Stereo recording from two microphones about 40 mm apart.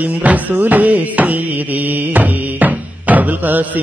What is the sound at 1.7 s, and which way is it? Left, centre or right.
Music, right.